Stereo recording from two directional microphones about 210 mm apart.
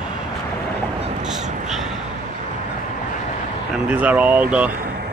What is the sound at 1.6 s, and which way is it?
Crow, centre (ahead or behind).